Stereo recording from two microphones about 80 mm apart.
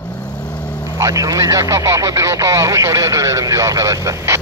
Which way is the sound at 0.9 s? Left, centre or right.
Right.